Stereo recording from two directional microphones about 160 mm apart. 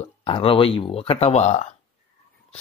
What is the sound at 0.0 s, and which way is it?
Speech, 35° left (ahead or behind).